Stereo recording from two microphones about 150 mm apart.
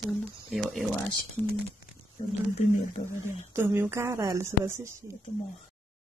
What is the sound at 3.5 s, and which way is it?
A woman's voice, 15° right (ahead or behind).